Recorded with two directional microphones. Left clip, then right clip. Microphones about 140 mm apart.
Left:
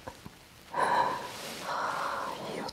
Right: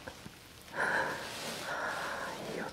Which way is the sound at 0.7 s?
90° left.